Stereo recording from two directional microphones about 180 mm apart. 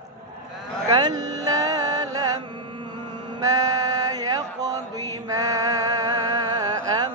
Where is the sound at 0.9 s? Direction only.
25° right (ahead or behind).